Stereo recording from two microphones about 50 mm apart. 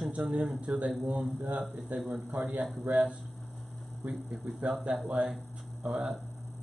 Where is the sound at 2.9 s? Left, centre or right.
Right.